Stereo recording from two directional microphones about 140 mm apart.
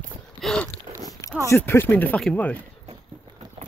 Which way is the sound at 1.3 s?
20° left (ahead or behind).